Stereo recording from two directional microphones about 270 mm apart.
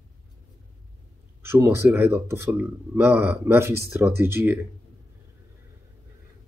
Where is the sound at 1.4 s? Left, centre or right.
Centre.